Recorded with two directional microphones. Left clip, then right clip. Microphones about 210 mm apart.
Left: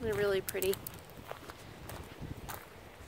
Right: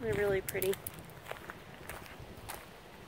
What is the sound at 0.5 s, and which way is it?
Speech, 15° left (ahead or behind).